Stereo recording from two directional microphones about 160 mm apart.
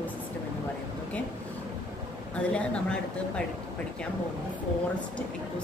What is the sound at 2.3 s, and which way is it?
A woman's voice, 5° left (ahead or behind).